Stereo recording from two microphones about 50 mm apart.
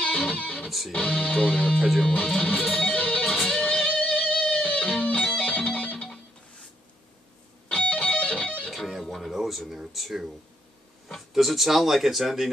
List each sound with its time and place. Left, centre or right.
0.0 s music: centre
0.7 s music: centre
0.9 s music: centre
1.8 s speech: centre
2.0 s music: centre
3.3 s music: centre
3.6 s music: left
7.7 s music: left
8.6 s music: centre
9.0 s a sound: centre
11.3 s speech: centre